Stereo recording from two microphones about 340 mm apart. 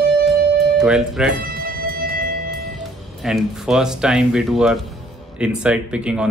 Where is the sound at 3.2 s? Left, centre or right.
Centre.